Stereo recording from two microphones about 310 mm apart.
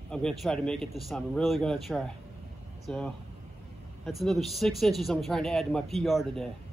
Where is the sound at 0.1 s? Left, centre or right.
Centre.